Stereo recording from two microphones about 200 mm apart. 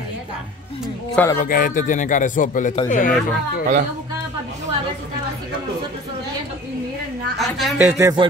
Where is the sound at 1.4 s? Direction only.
45° left (ahead or behind).